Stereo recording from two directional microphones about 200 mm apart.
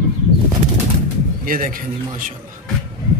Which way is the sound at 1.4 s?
45° right (ahead or behind).